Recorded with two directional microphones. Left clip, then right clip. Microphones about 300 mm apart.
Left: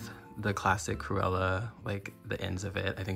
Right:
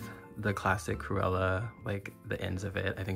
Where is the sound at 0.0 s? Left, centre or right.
Centre.